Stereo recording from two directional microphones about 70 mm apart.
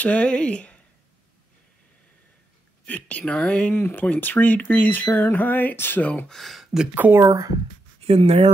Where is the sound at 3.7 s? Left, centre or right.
Left.